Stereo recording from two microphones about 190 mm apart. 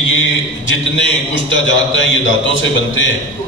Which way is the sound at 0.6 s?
75° left (ahead or behind).